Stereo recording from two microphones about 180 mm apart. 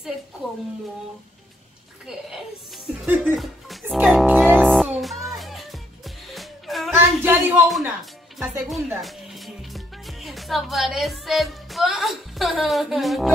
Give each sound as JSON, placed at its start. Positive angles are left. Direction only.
{"t": 2.0, "sound": "speech", "side_deg": 0}
{"t": 3.3, "sound": "music", "side_deg": 0}
{"t": 6.9, "sound": "a sound", "side_deg": -10}
{"t": 7.6, "sound": "speech", "side_deg": 0}